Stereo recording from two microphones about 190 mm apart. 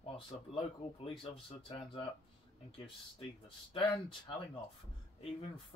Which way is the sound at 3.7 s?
25° left (ahead or behind).